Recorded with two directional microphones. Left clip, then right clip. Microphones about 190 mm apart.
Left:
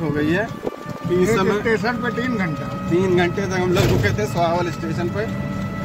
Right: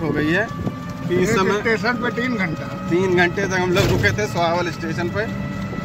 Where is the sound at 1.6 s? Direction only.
40° left (ahead or behind).